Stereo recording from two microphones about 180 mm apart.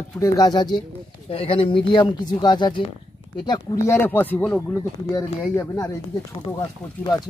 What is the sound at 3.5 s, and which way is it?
Speech, 15° left (ahead or behind).